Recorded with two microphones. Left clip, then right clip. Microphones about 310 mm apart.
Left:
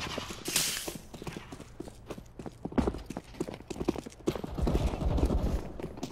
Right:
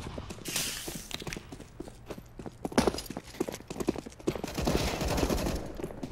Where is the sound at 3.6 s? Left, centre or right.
Centre.